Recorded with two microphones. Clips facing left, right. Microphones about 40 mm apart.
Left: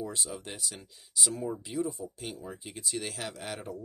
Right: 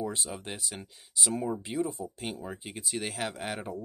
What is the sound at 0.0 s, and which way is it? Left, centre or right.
Speech, right.